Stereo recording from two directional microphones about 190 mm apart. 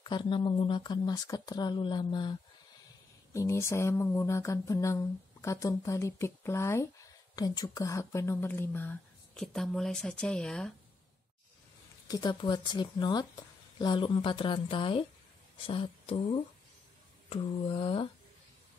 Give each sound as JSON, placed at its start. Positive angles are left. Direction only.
{"t": 0.0, "sound": "speech", "side_deg": 25}
{"t": 3.3, "sound": "speech", "side_deg": 15}
{"t": 12.1, "sound": "speech", "side_deg": 25}
{"t": 17.3, "sound": "speech", "side_deg": 30}